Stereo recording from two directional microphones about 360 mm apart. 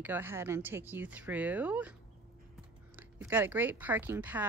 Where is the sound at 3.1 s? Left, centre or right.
Centre.